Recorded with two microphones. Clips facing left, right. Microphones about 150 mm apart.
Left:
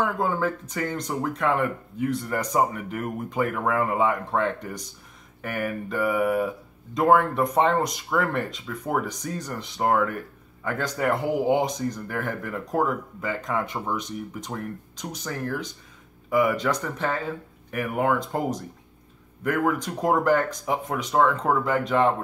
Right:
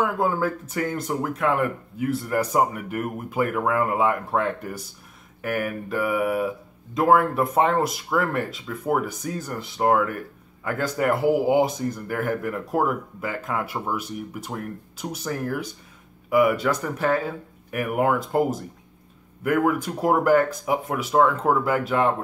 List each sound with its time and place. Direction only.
0.0 s speech: 5° right (ahead or behind)